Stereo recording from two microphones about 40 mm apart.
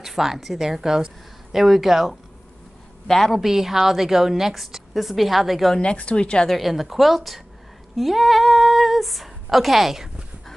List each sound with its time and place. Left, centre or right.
0.0 s a woman's voice: centre
3.1 s a woman's voice: centre
3.3 s a woman's voice: centre
5.8 s a woman's voice: left
6.5 s a woman's voice: centre
7.9 s a sound: centre